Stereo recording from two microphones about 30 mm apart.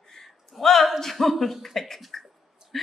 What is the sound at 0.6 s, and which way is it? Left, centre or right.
A man's voice, centre.